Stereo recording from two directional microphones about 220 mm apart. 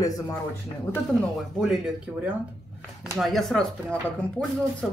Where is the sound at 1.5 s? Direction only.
5° right (ahead or behind).